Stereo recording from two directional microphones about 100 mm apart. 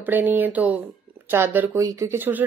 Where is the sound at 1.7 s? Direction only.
30° right (ahead or behind).